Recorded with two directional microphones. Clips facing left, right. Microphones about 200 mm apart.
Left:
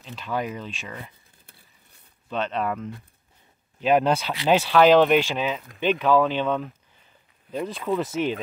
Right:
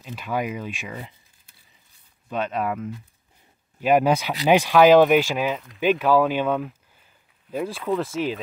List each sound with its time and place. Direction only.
0.0 s speech: 10° right (ahead or behind)
1.4 s a sound: 60° left (ahead or behind)
2.2 s speech: 10° right (ahead or behind)